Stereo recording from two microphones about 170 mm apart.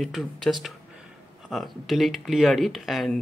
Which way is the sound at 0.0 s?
Centre (ahead or behind).